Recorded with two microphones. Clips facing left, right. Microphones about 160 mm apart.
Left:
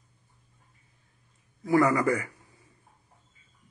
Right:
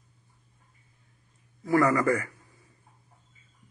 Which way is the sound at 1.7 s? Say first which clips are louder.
Even; 15° left (ahead or behind).